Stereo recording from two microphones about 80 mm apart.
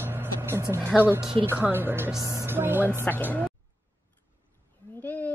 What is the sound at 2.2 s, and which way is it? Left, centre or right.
Speech, right.